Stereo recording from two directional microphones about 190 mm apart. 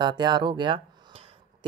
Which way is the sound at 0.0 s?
25° right (ahead or behind).